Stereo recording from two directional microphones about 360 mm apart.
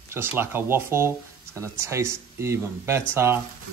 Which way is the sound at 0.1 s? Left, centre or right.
Centre.